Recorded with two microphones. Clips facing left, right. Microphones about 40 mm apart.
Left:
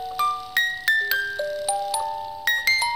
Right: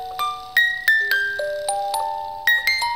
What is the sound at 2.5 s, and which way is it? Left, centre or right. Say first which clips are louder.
Music: right 3 dB; right.